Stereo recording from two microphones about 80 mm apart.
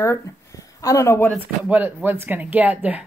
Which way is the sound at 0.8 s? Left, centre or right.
Left.